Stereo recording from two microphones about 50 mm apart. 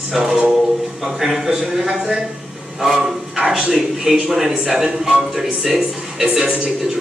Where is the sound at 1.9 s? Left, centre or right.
Right.